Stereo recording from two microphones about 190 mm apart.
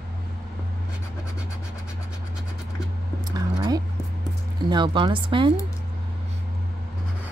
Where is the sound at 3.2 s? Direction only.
20° right (ahead or behind).